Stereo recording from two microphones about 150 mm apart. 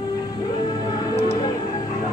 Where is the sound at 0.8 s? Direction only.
20° left (ahead or behind).